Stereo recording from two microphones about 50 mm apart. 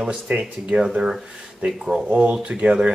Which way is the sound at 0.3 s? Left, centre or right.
Centre.